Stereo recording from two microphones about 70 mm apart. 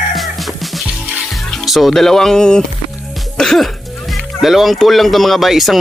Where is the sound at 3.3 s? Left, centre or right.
Centre.